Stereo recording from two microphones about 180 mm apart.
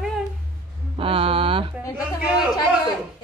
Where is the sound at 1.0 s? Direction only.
30° right (ahead or behind).